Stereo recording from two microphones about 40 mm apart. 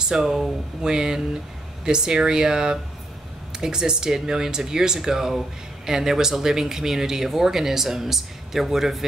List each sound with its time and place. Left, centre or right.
0.1 s speech: centre